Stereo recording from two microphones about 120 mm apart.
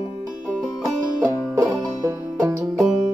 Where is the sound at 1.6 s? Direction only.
30° right (ahead or behind).